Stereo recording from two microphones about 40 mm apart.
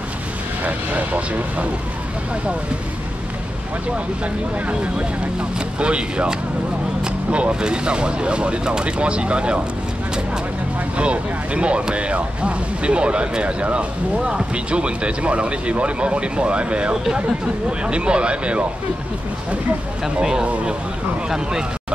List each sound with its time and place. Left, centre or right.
0.7 s speech: right
5.8 s speech: right
11.0 s speech: right
16.9 s speech: centre
17.6 s speech: right
20.2 s speech: centre